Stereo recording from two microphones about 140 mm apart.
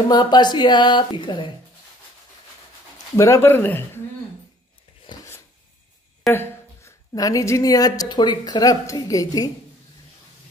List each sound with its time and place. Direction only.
0.1 s speech: 30° left (ahead or behind)
3.2 s speech: 20° left (ahead or behind)
6.3 s a woman's voice: 20° left (ahead or behind)